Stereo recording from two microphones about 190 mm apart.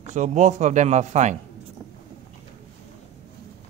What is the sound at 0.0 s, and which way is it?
Speech, 40° right (ahead or behind).